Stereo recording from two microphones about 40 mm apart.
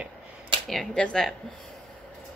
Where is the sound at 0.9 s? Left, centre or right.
Left.